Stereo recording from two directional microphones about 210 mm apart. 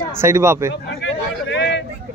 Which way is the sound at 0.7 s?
60° left (ahead or behind).